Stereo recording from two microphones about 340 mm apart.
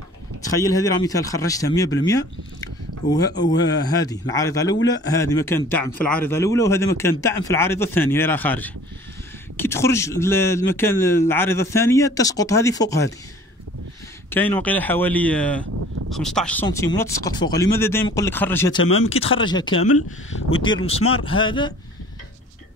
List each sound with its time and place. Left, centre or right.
0.4 s a man's voice: centre
14.3 s a man's voice: centre
19.8 s speech: left
21.3 s a man's voice: centre